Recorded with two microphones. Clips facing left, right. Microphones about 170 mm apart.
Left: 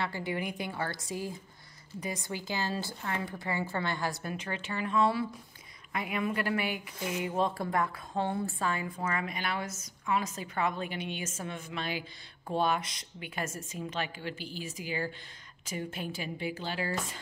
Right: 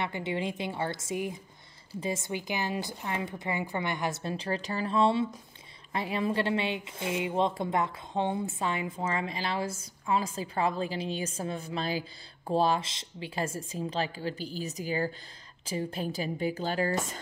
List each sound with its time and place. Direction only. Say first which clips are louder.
0.0 s a woman's voice: right 2 dB; 20° right (ahead or behind); by 17.2 s 45° right (ahead or behind)